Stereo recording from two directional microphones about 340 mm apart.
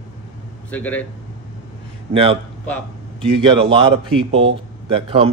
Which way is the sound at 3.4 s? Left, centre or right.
Centre.